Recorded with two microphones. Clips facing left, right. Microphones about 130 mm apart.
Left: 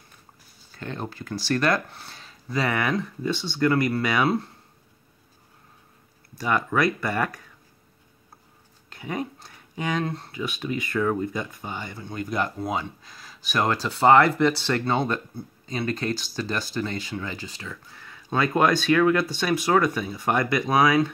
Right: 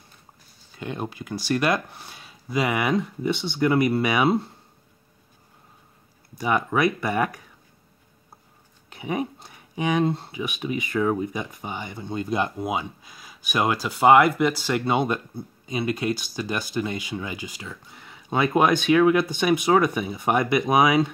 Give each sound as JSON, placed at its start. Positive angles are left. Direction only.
{"t": 0.7, "sound": "speech", "side_deg": -15}
{"t": 6.3, "sound": "speech", "side_deg": -15}
{"t": 8.9, "sound": "speech", "side_deg": -15}
{"t": 10.3, "sound": "speech", "side_deg": -10}